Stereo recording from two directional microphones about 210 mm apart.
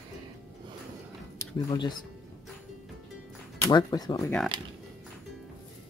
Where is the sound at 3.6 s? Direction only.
20° left (ahead or behind).